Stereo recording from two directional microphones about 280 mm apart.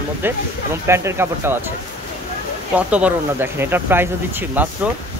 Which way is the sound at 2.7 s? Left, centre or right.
Centre.